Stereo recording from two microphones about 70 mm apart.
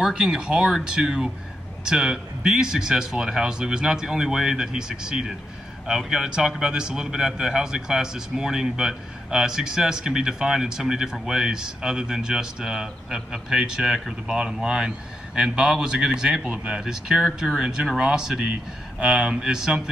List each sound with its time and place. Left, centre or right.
0.0 s a man's voice: centre